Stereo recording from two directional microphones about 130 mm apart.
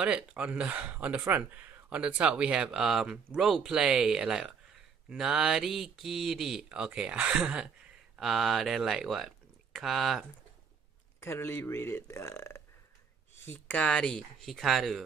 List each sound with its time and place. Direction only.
0.0 s speech: 10° right (ahead or behind)
11.1 s speech: 20° left (ahead or behind)
13.5 s speech: 10° left (ahead or behind)